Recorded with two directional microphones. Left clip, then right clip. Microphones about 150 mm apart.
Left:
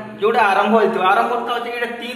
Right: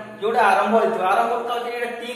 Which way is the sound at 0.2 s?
25° right (ahead or behind).